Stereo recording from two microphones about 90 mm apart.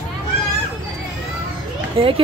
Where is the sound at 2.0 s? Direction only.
90° right.